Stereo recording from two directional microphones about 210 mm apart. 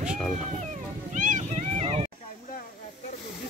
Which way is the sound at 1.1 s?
35° right (ahead or behind).